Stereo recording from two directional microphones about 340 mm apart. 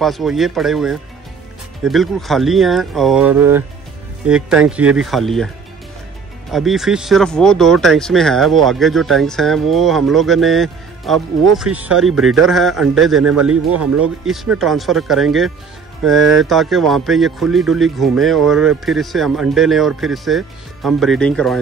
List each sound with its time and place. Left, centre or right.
0.0 s speech: centre
6.5 s speech: centre
13.5 s speech: right
14.2 s speech: centre